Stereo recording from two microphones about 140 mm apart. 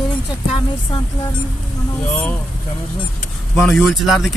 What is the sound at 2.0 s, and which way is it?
Speech, 10° left (ahead or behind).